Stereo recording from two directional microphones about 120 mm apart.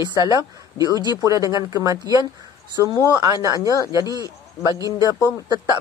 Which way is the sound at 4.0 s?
30° left (ahead or behind).